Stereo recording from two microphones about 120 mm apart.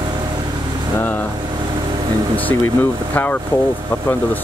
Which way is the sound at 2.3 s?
15° left (ahead or behind).